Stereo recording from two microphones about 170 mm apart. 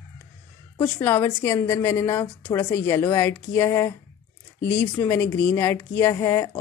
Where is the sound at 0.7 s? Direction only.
15° left (ahead or behind).